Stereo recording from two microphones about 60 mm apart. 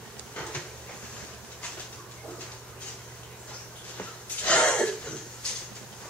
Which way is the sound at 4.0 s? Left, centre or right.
Left.